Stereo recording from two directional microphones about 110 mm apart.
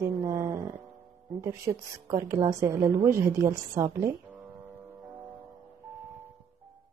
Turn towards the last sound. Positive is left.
turn(degrees=-15)  # may be behind; listen again after turning